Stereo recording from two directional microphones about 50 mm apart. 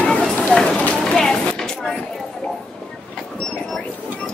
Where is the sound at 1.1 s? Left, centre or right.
Centre.